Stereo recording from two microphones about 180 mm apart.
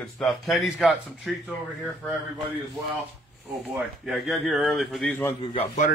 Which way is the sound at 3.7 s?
Centre (ahead or behind).